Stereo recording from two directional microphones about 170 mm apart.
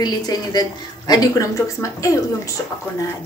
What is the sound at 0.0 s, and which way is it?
A woman's voice, 25° left (ahead or behind).